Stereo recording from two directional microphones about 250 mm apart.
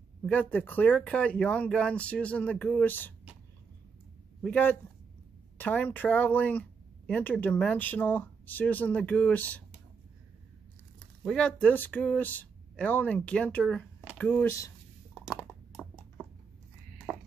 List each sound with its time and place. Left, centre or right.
0.2 s speech: centre
4.4 s a man's voice: centre
11.2 s speech: centre
15.1 s a sound: centre